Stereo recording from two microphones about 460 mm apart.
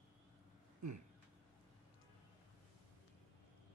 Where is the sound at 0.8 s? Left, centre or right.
Right.